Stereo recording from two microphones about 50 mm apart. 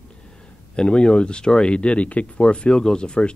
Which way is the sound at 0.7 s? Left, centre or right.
Centre.